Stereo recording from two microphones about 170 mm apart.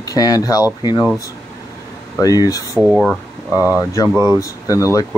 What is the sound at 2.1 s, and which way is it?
Speech, 20° left (ahead or behind).